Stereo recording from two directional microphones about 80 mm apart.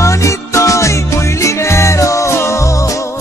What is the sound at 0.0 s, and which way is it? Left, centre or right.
Music, left.